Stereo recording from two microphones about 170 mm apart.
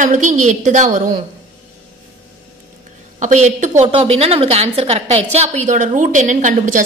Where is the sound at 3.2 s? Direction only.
45° right (ahead or behind).